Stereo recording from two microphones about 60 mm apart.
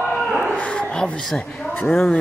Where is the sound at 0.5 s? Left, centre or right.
Centre.